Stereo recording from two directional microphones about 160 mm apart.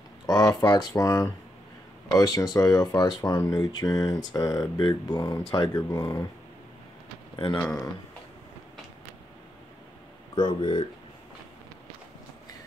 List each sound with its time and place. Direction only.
0.3 s speech: 25° left (ahead or behind)
7.3 s speech: 30° left (ahead or behind)
10.3 s speech: 30° left (ahead or behind)